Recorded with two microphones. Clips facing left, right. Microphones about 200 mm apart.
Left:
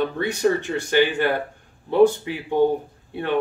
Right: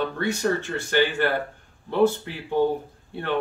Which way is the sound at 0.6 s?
15° left (ahead or behind).